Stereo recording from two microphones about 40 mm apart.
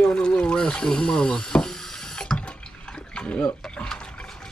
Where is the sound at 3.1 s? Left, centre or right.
Left.